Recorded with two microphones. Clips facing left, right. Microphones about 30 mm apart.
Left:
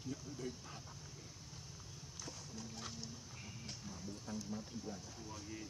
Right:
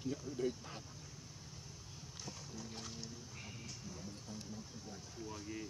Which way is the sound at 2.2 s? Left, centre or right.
Centre.